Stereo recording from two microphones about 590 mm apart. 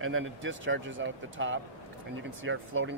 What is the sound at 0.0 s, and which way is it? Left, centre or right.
Speech, centre.